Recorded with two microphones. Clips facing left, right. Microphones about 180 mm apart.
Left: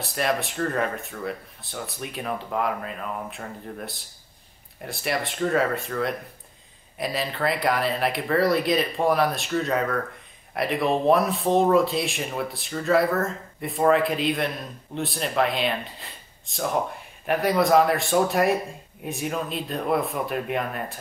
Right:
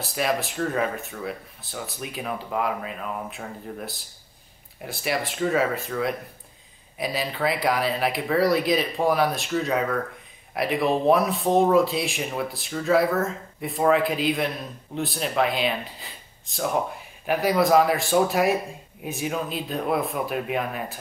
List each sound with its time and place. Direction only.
0.0 s speech: centre (ahead or behind)